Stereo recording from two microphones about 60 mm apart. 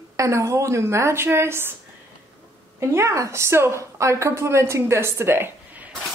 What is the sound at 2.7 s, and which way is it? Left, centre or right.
A woman's voice, right.